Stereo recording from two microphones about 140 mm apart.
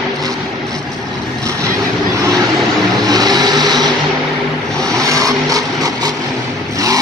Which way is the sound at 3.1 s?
30° right (ahead or behind).